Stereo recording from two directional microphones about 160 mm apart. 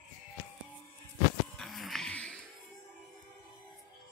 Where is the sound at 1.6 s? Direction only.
Centre (ahead or behind).